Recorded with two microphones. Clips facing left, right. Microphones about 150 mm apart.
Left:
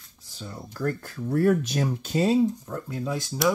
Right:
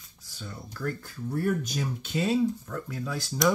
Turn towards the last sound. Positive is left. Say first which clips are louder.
# left 4 dB
turn(degrees=20)  # may be behind; listen again after turning